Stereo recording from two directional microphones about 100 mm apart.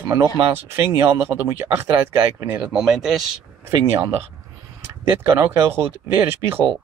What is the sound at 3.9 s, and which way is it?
Speech, 25° right (ahead or behind).